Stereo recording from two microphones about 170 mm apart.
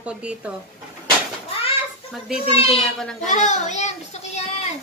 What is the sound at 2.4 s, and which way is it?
Speech, 35° left (ahead or behind).